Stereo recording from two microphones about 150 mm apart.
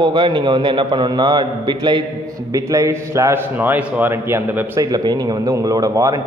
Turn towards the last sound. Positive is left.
turn(degrees=-20)  # may be behind; listen again after turning